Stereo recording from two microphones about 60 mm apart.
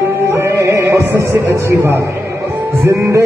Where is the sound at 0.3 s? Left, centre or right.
Right.